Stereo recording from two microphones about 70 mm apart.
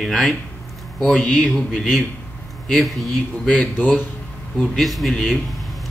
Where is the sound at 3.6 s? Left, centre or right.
Centre.